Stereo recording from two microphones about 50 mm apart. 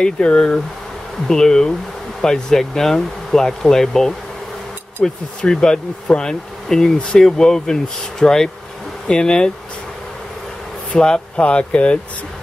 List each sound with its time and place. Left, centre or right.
0.0 s speech: centre
1.2 s speech: centre
10.9 s speech: centre